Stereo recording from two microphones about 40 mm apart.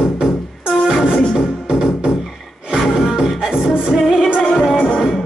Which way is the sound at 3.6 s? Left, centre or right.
Centre.